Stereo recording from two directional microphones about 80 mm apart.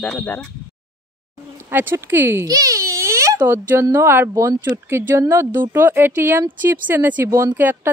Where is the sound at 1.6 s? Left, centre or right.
Right.